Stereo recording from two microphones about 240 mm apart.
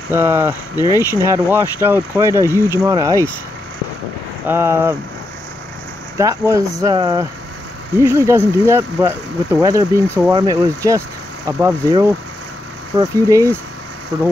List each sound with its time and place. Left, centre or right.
0.1 s speech: centre
4.5 s speech: centre
6.1 s speech: centre